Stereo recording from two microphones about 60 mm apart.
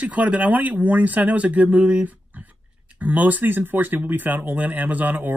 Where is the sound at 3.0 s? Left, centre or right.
Right.